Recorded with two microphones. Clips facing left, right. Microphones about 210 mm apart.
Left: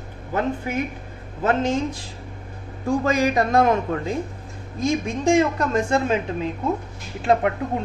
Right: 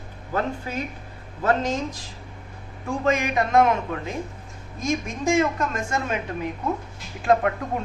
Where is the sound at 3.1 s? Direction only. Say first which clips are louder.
Even; 35° left (ahead or behind).